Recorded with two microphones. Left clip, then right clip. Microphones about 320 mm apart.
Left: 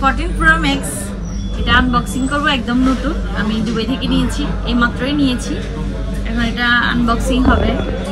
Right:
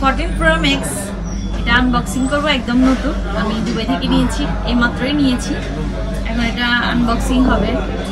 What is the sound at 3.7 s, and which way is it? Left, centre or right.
A woman's voice, centre.